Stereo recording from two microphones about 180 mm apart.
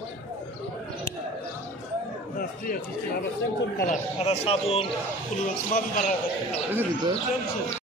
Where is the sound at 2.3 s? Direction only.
50° left (ahead or behind).